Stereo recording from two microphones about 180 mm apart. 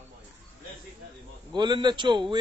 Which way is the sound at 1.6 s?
25° right (ahead or behind).